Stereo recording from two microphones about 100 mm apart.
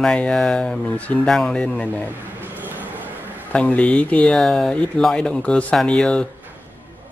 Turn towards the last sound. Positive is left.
turn(degrees=10)  # may be behind; listen again after turning